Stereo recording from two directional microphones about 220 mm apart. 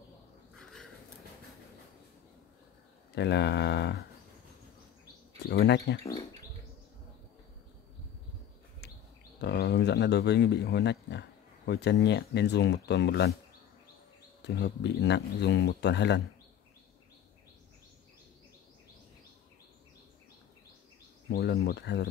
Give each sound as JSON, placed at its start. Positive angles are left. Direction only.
{"t": 0.6, "sound": "a sound", "side_deg": 0}
{"t": 3.2, "sound": "speech", "side_deg": 50}
{"t": 5.5, "sound": "speech", "side_deg": 50}
{"t": 8.8, "sound": "a sound", "side_deg": 50}
{"t": 9.4, "sound": "speech", "side_deg": 50}
{"t": 14.4, "sound": "speech", "side_deg": 50}
{"t": 21.3, "sound": "speech", "side_deg": 50}